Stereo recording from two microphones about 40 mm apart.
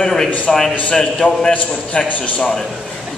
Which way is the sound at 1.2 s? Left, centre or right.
Left.